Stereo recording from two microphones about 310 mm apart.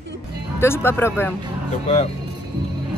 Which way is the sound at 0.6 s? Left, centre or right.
Centre.